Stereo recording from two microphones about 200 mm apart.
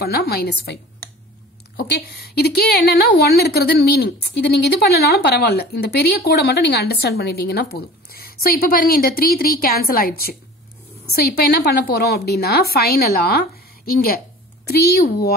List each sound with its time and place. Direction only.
0.0 s a woman's voice: 50° left (ahead or behind)
1.8 s a woman's voice: 55° left (ahead or behind)